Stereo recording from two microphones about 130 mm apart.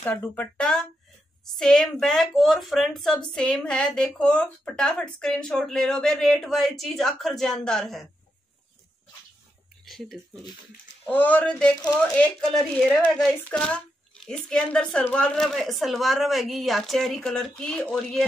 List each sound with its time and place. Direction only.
0.0 s a woman's voice: 15° left (ahead or behind)
9.8 s speech: centre (ahead or behind)
11.1 s a woman's voice: 10° left (ahead or behind)